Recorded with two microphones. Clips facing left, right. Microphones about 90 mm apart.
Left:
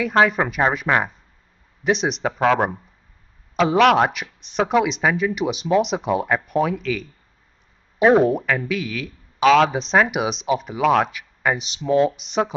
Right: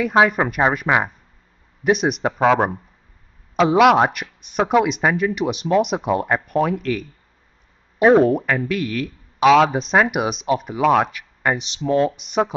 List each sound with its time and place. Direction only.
0.1 s speech: 10° right (ahead or behind)
8.1 s speech: 10° left (ahead or behind)
8.4 s speech: 5° right (ahead or behind)
11.8 s speech: 15° left (ahead or behind)
12.2 s speech: 5° right (ahead or behind)